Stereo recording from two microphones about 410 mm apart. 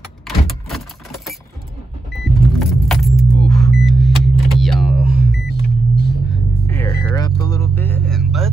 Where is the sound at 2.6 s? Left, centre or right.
Centre.